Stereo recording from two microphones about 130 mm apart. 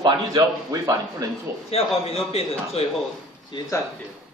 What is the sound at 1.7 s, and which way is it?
A man's voice, 50° left (ahead or behind).